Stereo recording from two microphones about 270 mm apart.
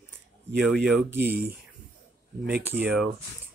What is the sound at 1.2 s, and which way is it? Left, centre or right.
Speech, right.